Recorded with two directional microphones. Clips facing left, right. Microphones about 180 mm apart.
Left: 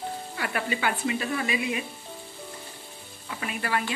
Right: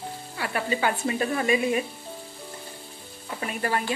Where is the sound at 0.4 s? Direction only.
35° right (ahead or behind).